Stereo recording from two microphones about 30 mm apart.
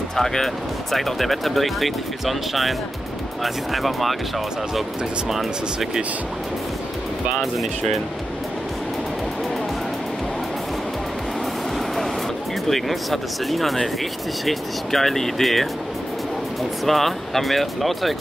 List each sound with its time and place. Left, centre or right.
0.1 s speech: centre
0.9 s speech: centre
5.3 s speech: centre
12.6 s speech: centre
16.8 s speech: centre